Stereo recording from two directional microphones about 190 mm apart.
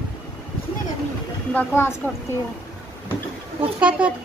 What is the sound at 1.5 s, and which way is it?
Speech, 10° left (ahead or behind).